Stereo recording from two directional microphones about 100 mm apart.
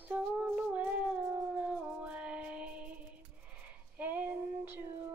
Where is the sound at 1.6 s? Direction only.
15° right (ahead or behind).